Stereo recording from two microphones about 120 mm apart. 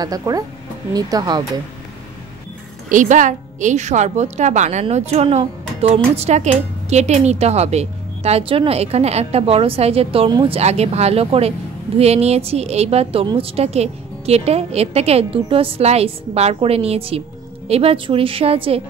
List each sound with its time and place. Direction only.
0.0 s speech: 35° right (ahead or behind)
2.9 s a woman's voice: 90° right; by 10.6 s 45° right (ahead or behind)
10.6 s a woman's voice: 60° right (ahead or behind)